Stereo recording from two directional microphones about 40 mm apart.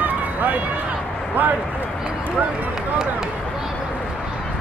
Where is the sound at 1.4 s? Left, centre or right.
Right.